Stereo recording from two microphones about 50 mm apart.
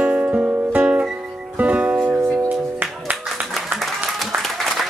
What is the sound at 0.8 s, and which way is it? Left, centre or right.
Music, right.